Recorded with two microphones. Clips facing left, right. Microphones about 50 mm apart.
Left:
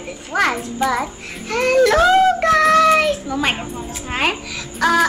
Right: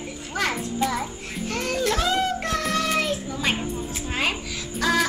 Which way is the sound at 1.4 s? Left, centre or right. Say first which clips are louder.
Left 11 dB; left.